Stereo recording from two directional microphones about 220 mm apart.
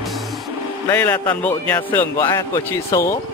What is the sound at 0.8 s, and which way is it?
Speech, 10° left (ahead or behind).